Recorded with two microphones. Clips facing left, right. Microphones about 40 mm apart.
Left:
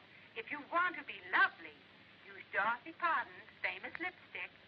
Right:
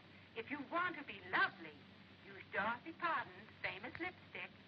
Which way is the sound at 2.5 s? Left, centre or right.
Centre.